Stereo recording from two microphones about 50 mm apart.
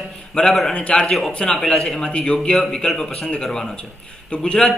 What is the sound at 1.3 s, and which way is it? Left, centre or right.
A man's voice, centre.